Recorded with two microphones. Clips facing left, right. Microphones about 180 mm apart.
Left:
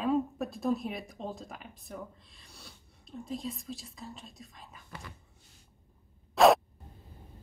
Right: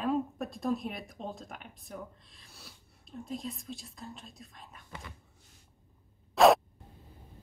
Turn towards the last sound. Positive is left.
turn(degrees=0)  # may be behind; listen again after turning